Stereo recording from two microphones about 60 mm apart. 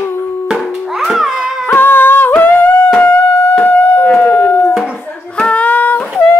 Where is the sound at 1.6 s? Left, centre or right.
Left.